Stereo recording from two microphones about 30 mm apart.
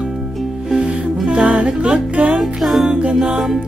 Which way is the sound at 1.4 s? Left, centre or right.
Right.